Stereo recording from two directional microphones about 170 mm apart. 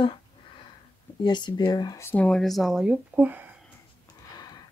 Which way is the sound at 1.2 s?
25° left (ahead or behind).